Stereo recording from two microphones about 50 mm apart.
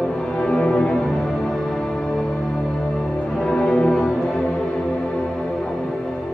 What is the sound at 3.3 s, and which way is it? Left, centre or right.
Music, centre.